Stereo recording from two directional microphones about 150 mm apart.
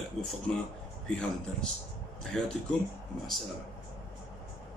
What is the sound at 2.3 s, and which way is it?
Speech, 5° left (ahead or behind).